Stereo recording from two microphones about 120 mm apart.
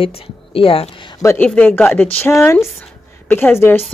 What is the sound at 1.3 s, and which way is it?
A woman's voice, 10° left (ahead or behind).